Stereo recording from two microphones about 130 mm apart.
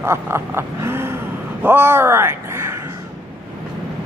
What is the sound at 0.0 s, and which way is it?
Speech, 20° right (ahead or behind).